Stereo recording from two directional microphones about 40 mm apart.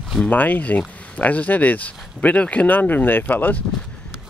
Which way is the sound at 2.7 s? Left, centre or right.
Left.